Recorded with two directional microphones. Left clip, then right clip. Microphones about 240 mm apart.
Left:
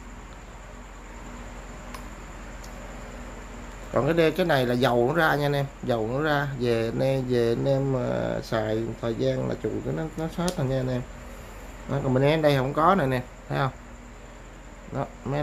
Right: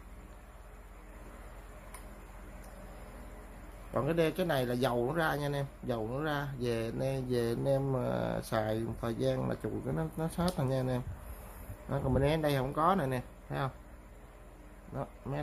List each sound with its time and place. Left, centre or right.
3.9 s a man's voice: centre
15.0 s speech: centre